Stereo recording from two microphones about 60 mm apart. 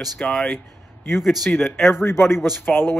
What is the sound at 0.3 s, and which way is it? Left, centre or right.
Speech, centre.